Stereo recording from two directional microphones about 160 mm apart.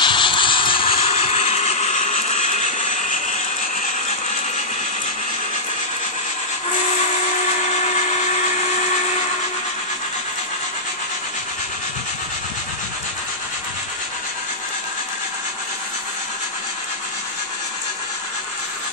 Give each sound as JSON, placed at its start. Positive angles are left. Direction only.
{"t": 0.0, "sound": "vehicle", "side_deg": 30}